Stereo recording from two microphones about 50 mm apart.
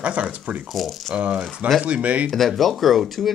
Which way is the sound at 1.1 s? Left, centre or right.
Right.